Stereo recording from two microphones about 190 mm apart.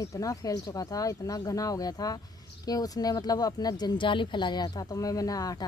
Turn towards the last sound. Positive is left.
turn(degrees=20)  # may be behind; listen again after turning